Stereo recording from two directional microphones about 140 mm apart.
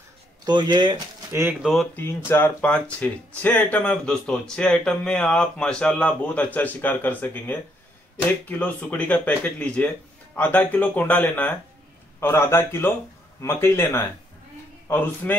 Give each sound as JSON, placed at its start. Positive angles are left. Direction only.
{"t": 0.5, "sound": "speech", "side_deg": -35}
{"t": 1.3, "sound": "speech", "side_deg": -15}
{"t": 1.6, "sound": "speech", "side_deg": 0}
{"t": 2.0, "sound": "speech", "side_deg": 15}
{"t": 15.2, "sound": "speech", "side_deg": 10}